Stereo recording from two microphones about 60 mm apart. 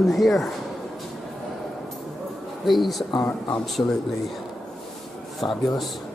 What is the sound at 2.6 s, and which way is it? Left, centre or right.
Speech, centre.